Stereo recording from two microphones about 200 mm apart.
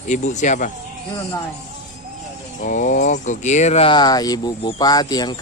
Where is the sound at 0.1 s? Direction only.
35° left (ahead or behind).